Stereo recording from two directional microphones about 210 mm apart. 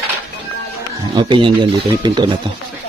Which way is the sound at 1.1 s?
20° right (ahead or behind).